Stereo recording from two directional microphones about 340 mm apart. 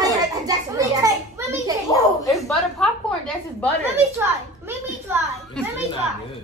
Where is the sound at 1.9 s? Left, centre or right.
Centre.